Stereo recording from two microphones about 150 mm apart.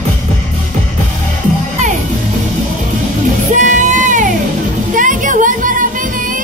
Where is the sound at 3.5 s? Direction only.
55° right (ahead or behind).